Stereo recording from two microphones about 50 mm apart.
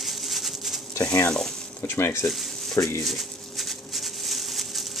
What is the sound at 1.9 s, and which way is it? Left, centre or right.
Speech, left.